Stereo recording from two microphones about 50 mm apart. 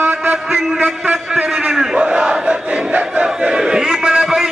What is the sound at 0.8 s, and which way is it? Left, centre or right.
A man's voice, right.